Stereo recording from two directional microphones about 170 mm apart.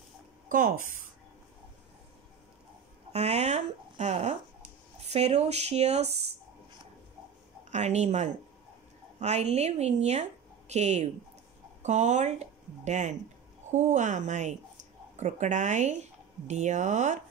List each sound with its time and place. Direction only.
0.5 s speech: 50° right (ahead or behind)
3.1 s speech: 40° right (ahead or behind)
7.7 s speech: 40° right (ahead or behind)